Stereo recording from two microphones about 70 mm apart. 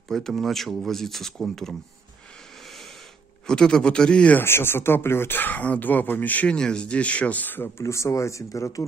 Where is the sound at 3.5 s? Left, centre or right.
Centre.